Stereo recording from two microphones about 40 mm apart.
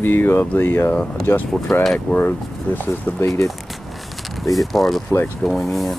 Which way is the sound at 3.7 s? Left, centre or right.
Centre.